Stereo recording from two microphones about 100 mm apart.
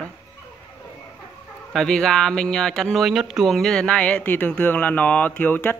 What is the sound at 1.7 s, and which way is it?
Speech, 5° left (ahead or behind).